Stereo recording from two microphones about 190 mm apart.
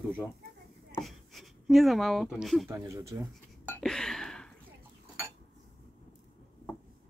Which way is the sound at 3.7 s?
5° left (ahead or behind).